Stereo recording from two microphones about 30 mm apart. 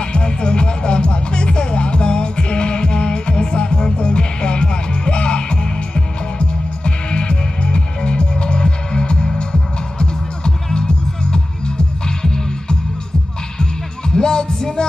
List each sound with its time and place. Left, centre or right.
0.0 s music: left
14.1 s music: left